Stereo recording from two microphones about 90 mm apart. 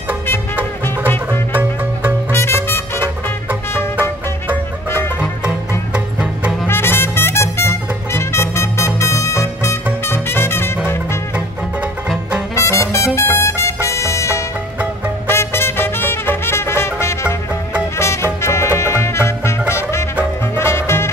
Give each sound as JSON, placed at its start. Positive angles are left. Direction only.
{"t": 0.8, "sound": "music", "side_deg": 25}
{"t": 1.5, "sound": "music", "side_deg": -20}
{"t": 2.3, "sound": "music", "side_deg": 30}
{"t": 5.9, "sound": "music", "side_deg": -10}
{"t": 6.7, "sound": "music", "side_deg": 25}
{"t": 12.5, "sound": "music", "side_deg": 35}